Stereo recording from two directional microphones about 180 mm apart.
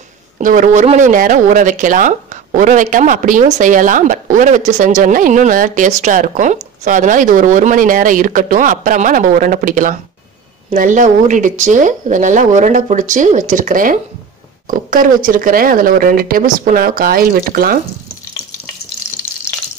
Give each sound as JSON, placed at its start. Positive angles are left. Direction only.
{"t": 0.4, "sound": "speech", "side_deg": -45}